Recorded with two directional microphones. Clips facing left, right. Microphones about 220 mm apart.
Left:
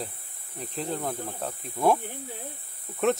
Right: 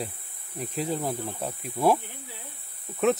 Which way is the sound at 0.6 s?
5° right (ahead or behind).